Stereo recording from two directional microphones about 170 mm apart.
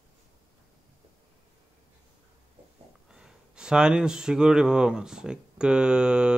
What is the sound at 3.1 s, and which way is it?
Speech, 5° right (ahead or behind).